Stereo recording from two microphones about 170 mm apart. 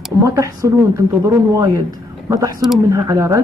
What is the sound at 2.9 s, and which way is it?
Speech, 15° right (ahead or behind).